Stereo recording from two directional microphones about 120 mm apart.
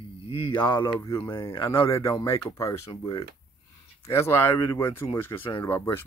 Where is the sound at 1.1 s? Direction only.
45° left (ahead or behind).